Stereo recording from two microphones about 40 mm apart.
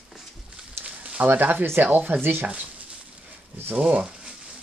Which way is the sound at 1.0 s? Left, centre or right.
Right.